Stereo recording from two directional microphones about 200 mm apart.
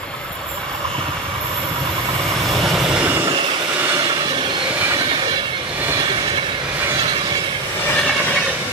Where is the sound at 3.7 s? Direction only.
10° right (ahead or behind).